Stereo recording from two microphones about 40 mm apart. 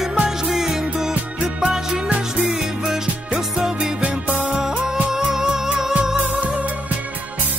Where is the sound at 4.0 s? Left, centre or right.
Right.